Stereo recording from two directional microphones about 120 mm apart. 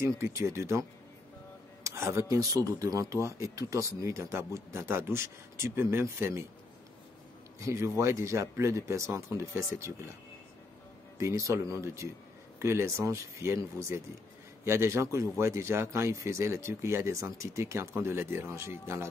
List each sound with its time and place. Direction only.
0.2 s speech: 25° right (ahead or behind)
7.6 s speech: 25° right (ahead or behind)
11.1 s speech: 25° right (ahead or behind)